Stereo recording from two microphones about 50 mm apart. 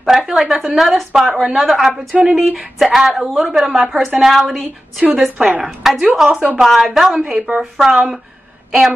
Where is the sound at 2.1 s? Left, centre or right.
Centre.